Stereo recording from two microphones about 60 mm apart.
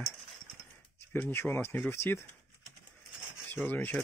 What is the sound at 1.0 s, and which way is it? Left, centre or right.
Speech, left.